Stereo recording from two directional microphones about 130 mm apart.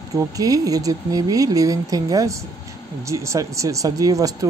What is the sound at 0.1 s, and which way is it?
Speech, 25° right (ahead or behind).